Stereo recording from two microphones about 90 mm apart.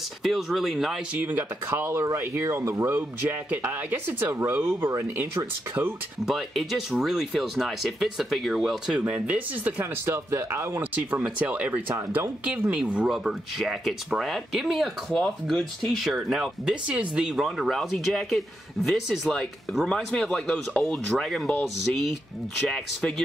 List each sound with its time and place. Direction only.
0.2 s speech: centre (ahead or behind)
1.1 s speech: 20° right (ahead or behind)
6.2 s speech: centre (ahead or behind)
9.0 s speech: 15° right (ahead or behind)
10.0 s speech: 30° right (ahead or behind)
10.8 s speech: 15° right (ahead or behind)
11.9 s speech: 30° right (ahead or behind)
12.4 s speech: 15° right (ahead or behind); by 21.5 s 5° left (ahead or behind)
22.7 s speech: 5° left (ahead or behind)